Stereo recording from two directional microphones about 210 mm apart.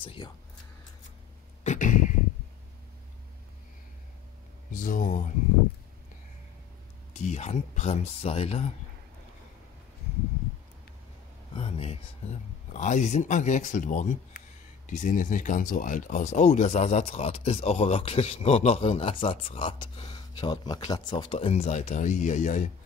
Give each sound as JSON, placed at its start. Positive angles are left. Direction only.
{"t": 0.0, "sound": "speech", "side_deg": 25}
{"t": 1.6, "sound": "a sound", "side_deg": 35}
{"t": 4.7, "sound": "speech", "side_deg": 40}
{"t": 7.2, "sound": "speech", "side_deg": 35}
{"t": 11.5, "sound": "speech", "side_deg": 25}